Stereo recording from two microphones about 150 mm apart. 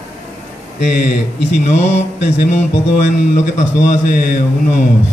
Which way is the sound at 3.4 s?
55° left (ahead or behind).